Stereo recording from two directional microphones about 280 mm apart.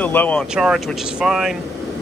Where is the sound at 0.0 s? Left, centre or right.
Centre.